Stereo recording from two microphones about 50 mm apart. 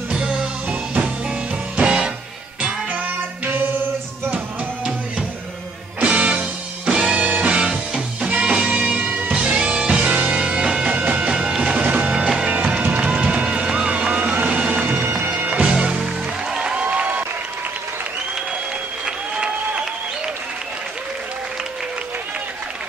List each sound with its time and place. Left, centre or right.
0.1 s music: centre
1.8 s music: centre
3.4 s music: right
6.0 s music: right
6.9 s music: centre
7.2 s music: right
11.7 s music: right
14.6 s bagpipes: right
14.9 s bagpipes: right
15.5 s music: right
16.7 s applause: right
19.0 s a sound: centre